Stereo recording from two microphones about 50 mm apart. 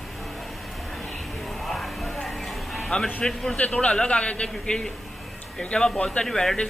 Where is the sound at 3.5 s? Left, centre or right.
Left.